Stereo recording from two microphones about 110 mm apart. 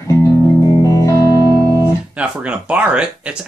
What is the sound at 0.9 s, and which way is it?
Music, 30° left (ahead or behind).